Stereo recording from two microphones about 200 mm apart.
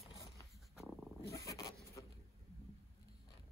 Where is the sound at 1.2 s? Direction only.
15° left (ahead or behind).